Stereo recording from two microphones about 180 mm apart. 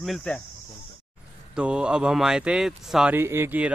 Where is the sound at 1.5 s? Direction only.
5° right (ahead or behind).